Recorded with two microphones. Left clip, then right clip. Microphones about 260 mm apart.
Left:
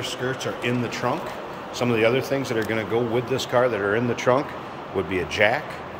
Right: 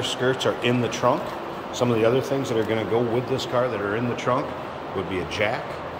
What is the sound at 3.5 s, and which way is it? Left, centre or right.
Speech, centre.